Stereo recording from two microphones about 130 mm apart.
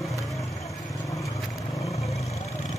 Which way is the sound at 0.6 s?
25° left (ahead or behind).